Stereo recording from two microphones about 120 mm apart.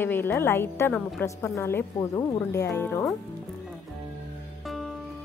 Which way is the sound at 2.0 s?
30° left (ahead or behind).